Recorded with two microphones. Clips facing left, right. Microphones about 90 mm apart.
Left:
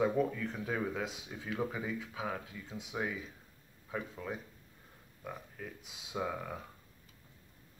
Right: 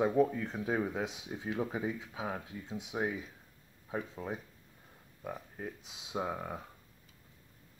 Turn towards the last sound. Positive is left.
turn(degrees=-20)  # may be behind; listen again after turning